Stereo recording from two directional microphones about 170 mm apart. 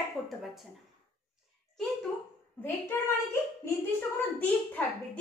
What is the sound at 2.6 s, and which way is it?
A woman's voice, 15° left (ahead or behind).